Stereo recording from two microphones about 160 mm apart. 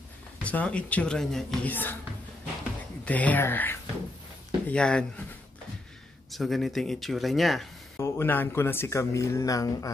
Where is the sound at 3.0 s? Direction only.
10° left (ahead or behind).